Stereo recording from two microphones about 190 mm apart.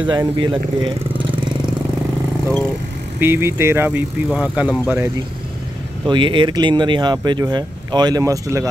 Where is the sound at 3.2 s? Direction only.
10° right (ahead or behind).